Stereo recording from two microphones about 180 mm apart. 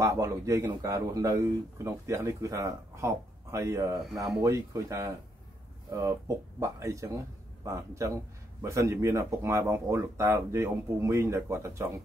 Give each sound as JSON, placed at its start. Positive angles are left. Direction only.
{"t": 0.0, "sound": "speech", "side_deg": -20}